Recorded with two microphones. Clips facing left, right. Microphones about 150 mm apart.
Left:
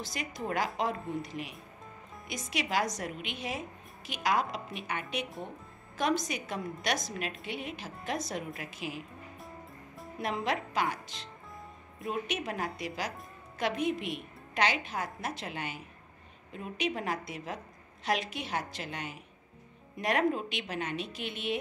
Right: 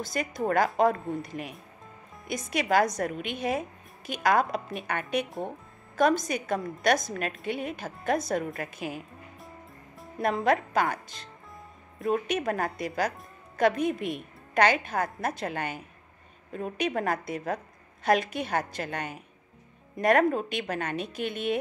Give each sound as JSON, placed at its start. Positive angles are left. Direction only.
{"t": 0.0, "sound": "a woman's voice", "side_deg": -50}
{"t": 10.2, "sound": "a woman's voice", "side_deg": -50}
{"t": 12.1, "sound": "a woman's voice", "side_deg": -45}